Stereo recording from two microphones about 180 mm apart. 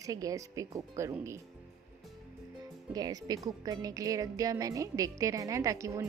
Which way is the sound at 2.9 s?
20° right (ahead or behind).